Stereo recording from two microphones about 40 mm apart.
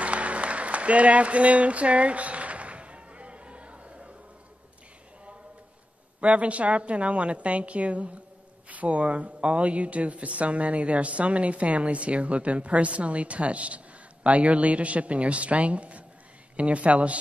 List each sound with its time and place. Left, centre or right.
0.0 s applause: right
6.2 s speech: right